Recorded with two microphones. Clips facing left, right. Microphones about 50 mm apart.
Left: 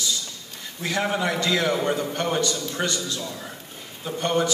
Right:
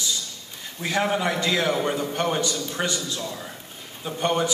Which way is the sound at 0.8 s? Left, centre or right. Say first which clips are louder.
Right 1 dB; centre.